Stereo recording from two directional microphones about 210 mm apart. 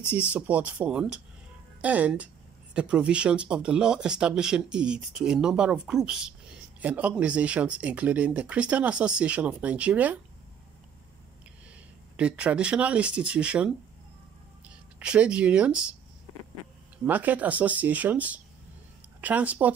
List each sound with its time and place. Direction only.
0.3 s speech: 5° right (ahead or behind)
12.2 s speech: 5° right (ahead or behind)
15.0 s speech: 5° right (ahead or behind)
17.0 s speech: 10° right (ahead or behind)